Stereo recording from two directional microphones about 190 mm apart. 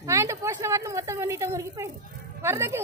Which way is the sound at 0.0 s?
15° right (ahead or behind).